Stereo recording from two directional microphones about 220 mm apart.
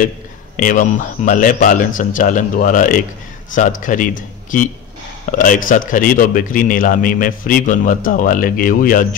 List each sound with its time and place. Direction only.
0.6 s a man's voice: 35° left (ahead or behind)